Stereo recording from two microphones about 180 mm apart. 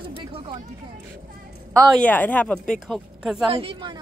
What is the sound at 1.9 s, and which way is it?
Speech, 10° left (ahead or behind).